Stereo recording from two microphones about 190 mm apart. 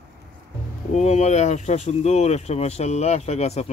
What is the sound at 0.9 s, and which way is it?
Speech, 35° left (ahead or behind).